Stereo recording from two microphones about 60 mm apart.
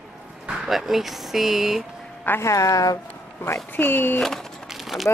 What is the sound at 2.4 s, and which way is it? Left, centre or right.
Speech, left.